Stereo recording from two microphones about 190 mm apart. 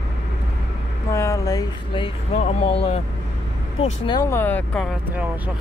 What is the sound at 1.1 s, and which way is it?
Speech, 15° left (ahead or behind).